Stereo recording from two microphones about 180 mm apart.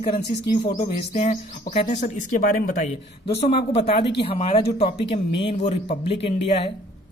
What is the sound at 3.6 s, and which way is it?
Speech, 35° left (ahead or behind).